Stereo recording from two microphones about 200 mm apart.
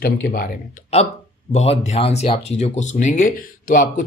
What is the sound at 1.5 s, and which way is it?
Speech, 30° left (ahead or behind).